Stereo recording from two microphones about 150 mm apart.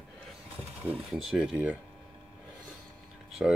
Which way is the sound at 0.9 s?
5° right (ahead or behind).